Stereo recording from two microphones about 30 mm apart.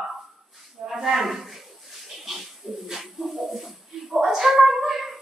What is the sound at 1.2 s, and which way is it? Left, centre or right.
Livestock, centre.